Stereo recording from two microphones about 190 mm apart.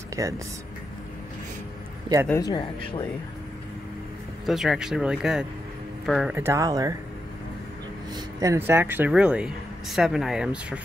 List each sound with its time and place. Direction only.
0.2 s speech: 15° right (ahead or behind)
2.2 s speech: 15° left (ahead or behind)
2.5 s speech: 25° left (ahead or behind)
4.5 s speech: centre (ahead or behind)
6.3 s speech: 15° right (ahead or behind)
8.1 s speech: 15° right (ahead or behind)